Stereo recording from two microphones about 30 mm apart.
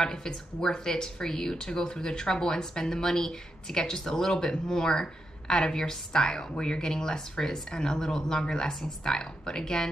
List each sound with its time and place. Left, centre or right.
0.0 s speech: left